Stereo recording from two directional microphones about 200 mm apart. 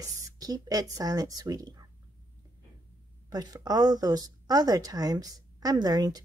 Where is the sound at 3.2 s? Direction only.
20° right (ahead or behind).